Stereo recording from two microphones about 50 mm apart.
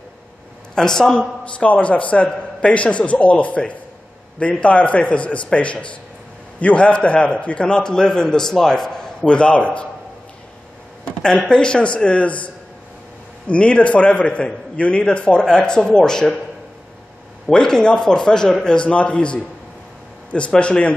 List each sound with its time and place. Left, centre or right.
0.7 s a man's voice: centre
1.4 s a man's voice: left
11.1 s a man's voice: centre
17.5 s a man's voice: centre